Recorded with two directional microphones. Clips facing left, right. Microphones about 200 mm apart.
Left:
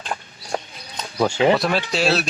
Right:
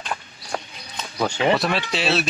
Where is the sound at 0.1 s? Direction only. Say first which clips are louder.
Left 3 dB; 30° left (ahead or behind).